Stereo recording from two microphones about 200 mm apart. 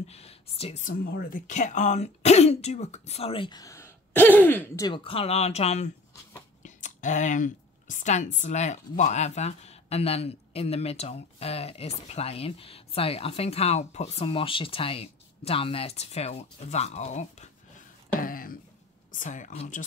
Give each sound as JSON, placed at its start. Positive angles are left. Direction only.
{"t": 0.0, "sound": "a woman's voice", "side_deg": 30}
{"t": 4.8, "sound": "a woman's voice", "side_deg": 25}
{"t": 18.2, "sound": "a sound", "side_deg": 45}
{"t": 19.1, "sound": "a woman's voice", "side_deg": 40}